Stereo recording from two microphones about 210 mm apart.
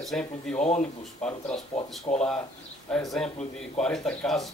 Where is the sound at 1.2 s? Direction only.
5° left (ahead or behind).